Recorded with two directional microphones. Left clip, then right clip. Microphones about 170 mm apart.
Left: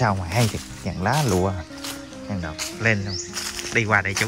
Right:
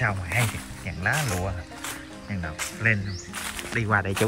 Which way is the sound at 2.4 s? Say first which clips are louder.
Left 2 dB; 10° left (ahead or behind).